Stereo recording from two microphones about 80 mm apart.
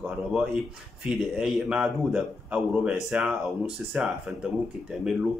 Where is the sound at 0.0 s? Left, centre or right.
Centre.